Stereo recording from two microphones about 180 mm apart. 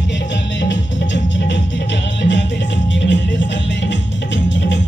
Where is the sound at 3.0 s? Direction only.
85° left.